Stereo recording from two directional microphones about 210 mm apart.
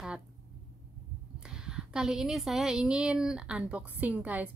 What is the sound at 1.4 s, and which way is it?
A woman's voice, 5° right (ahead or behind).